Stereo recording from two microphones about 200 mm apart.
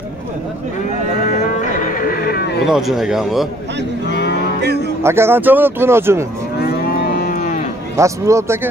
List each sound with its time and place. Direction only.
1.2 s music: 40° left (ahead or behind)
2.6 s speech: centre (ahead or behind)
4.1 s music: 55° left (ahead or behind)
4.6 s speech: 55° right (ahead or behind)
5.0 s speech: 10° right (ahead or behind)
6.6 s livestock: 50° left (ahead or behind)
7.9 s speech: 15° right (ahead or behind)